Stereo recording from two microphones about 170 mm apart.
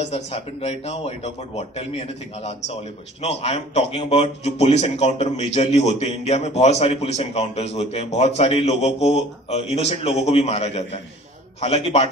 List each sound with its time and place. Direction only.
0.0 s speech: 40° left (ahead or behind)